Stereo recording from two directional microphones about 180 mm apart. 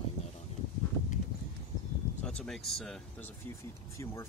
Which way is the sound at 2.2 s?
5° left (ahead or behind).